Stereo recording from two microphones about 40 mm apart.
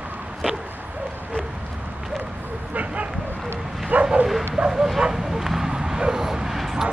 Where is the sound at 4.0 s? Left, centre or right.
Right.